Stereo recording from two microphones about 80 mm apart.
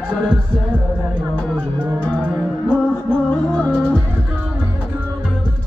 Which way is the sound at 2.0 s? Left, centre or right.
Centre.